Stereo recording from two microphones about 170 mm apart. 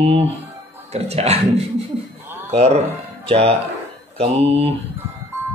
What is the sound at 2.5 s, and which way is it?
Speech, 40° right (ahead or behind).